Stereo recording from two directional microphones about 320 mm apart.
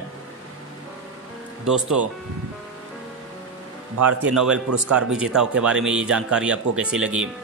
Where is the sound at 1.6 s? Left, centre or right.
Centre.